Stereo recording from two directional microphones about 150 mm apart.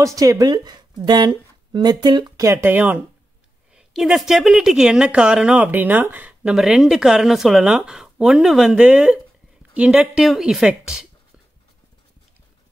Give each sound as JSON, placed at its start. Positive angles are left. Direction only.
{"t": 0.0, "sound": "a woman's voice", "side_deg": -20}